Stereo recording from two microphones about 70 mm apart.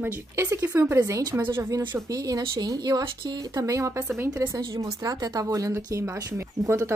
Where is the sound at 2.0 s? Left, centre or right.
Right.